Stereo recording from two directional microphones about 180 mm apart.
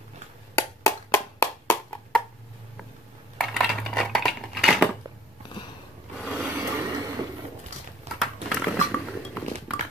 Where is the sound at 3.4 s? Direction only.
Centre (ahead or behind).